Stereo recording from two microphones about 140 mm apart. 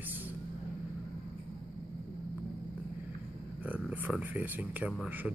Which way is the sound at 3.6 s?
10° right (ahead or behind).